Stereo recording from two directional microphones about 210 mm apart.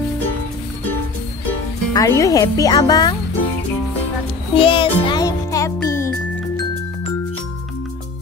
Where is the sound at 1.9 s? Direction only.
15° left (ahead or behind).